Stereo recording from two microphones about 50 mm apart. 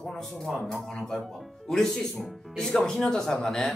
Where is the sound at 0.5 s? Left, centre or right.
Centre.